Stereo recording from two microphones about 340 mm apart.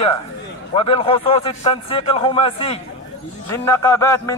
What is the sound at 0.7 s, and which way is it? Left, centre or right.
A man's voice, centre.